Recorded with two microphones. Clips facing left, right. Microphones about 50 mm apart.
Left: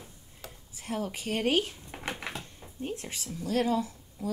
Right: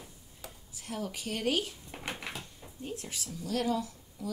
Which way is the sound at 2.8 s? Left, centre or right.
Left.